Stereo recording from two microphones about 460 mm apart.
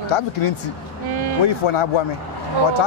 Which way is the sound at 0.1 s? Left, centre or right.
Left.